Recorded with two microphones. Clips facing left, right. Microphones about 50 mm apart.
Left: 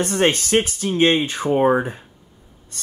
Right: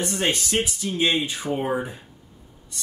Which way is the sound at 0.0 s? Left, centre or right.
Left.